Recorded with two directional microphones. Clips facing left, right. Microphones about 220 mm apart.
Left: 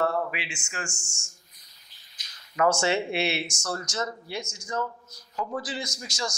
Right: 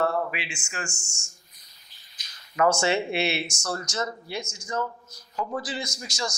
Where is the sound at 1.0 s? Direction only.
10° right (ahead or behind).